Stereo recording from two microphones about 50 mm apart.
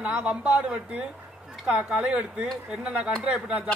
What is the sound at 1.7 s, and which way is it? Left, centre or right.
A man's voice, centre.